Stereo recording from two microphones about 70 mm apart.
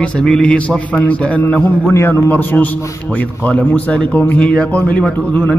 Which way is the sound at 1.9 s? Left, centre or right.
Left.